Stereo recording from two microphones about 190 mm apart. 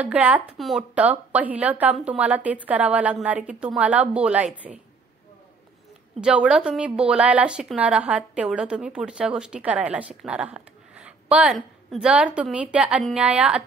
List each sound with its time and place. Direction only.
0.0 s a woman's voice: 5° right (ahead or behind)
6.2 s a woman's voice: 5° right (ahead or behind)